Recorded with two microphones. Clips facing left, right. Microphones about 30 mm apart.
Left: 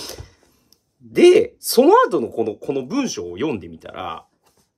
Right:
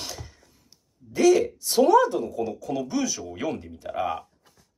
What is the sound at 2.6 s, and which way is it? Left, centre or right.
Speech, left.